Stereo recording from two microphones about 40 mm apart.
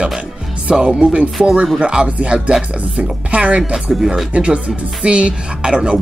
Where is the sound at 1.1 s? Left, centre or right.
Right.